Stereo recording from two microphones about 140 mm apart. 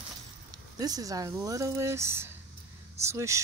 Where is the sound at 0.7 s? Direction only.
25° right (ahead or behind).